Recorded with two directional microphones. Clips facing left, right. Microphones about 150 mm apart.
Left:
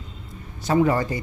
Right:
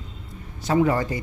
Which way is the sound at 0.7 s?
35° left (ahead or behind).